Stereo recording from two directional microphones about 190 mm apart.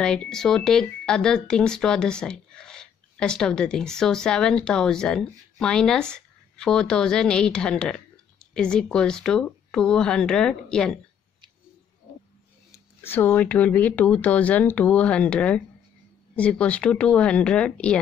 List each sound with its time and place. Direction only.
0.0 s speech: 5° left (ahead or behind)
13.0 s speech: 10° left (ahead or behind)